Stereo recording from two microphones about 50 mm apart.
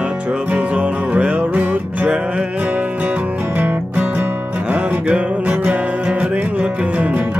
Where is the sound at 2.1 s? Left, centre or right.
Right.